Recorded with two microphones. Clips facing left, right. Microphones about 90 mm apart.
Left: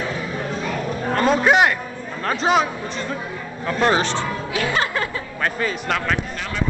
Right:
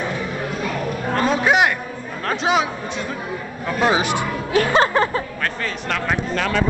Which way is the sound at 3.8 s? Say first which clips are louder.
Even; 10° right (ahead or behind).